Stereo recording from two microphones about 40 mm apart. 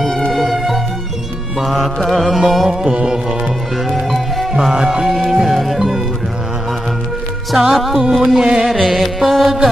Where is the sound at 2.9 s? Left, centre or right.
Centre.